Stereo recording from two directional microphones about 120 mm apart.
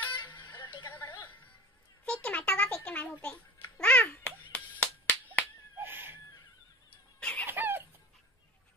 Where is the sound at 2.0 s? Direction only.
10° left (ahead or behind).